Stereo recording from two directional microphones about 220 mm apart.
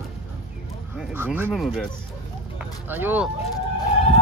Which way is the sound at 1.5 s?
Centre (ahead or behind).